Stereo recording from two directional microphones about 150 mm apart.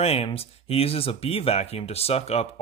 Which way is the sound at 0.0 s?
40° left (ahead or behind).